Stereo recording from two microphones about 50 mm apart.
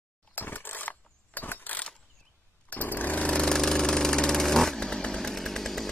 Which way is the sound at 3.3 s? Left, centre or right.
Centre.